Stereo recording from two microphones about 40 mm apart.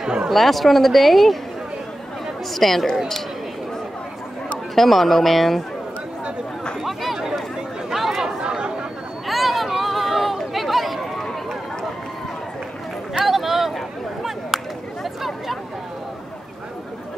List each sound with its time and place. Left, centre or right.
0.3 s speech: centre
2.5 s speech: centre
4.7 s speech: centre
6.8 s a sound: centre
7.9 s chatter: centre
8.4 s chatter: right
9.3 s chatter: centre
13.2 s a sound: centre